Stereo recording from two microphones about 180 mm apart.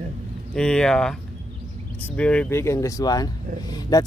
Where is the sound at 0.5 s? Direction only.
5° left (ahead or behind).